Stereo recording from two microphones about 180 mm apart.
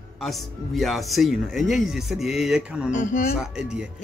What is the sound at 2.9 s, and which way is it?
Speech, 45° left (ahead or behind).